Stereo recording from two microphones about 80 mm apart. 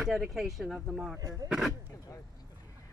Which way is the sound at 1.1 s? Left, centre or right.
Right.